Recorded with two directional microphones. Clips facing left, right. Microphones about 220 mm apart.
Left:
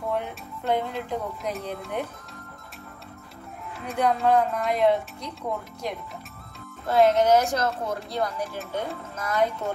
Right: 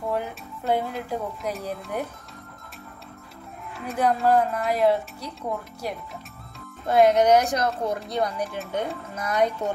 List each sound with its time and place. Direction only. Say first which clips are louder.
0.1 s speech: right 1 dB; 5° right (ahead or behind)
3.8 s speech: right 1 dB; centre (ahead or behind)
6.9 s speech: right 2 dB; 15° right (ahead or behind)